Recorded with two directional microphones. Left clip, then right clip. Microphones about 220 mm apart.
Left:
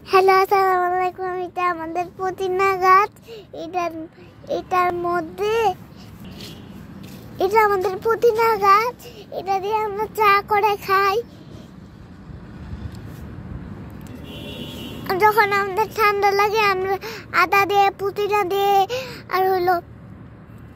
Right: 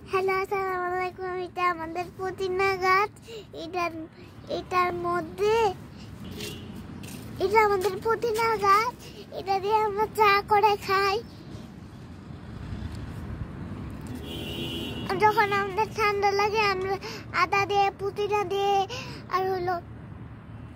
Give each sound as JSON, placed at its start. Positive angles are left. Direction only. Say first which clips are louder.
{"t": 0.1, "sound": "a child's voice", "louder": "left 12 dB", "side_deg": 40}
{"t": 7.3, "sound": "a child's voice", "louder": "left 5 dB", "side_deg": 25}
{"t": 15.0, "sound": "a child's voice", "louder": "left 6 dB", "side_deg": 30}